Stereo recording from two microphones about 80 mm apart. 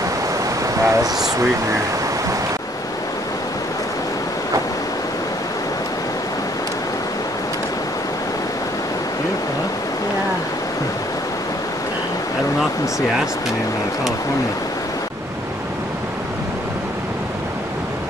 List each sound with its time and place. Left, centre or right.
0.8 s speech: right